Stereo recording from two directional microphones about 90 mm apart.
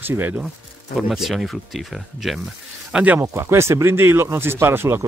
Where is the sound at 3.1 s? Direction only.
30° right (ahead or behind).